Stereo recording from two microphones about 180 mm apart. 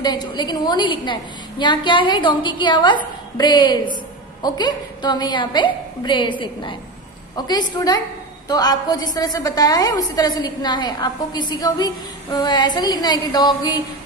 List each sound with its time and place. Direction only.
0.0 s a woman's voice: 25° left (ahead or behind)